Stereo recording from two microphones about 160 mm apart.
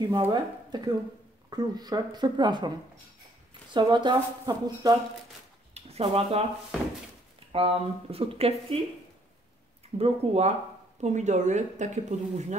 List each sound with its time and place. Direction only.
0.2 s speech: 30° right (ahead or behind)
3.7 s speech: 30° right (ahead or behind)
5.8 s speech: 40° right (ahead or behind)
7.5 s speech: 35° right (ahead or behind)
9.9 s speech: 40° right (ahead or behind)